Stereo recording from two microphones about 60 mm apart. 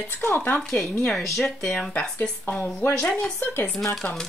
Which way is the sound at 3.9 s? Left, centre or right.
Centre.